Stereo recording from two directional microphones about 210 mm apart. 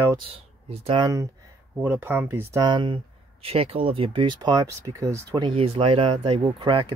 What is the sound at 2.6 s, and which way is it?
Speech, 20° right (ahead or behind).